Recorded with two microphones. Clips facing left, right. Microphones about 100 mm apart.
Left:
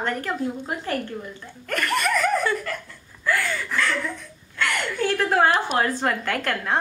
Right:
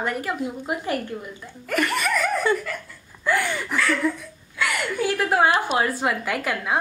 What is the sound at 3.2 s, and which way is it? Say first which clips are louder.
A woman's voice: right 2 dB; 20° right (ahead or behind).